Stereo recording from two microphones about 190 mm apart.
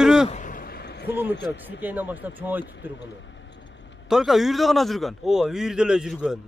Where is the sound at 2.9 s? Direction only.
70° left (ahead or behind).